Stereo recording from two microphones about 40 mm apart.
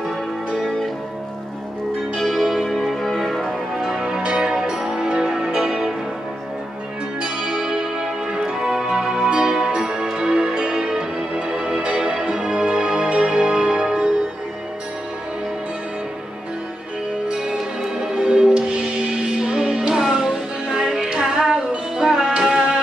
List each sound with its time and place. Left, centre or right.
2.1 s music: centre
3.7 s music: centre
7.2 s music: centre
17.3 s music: centre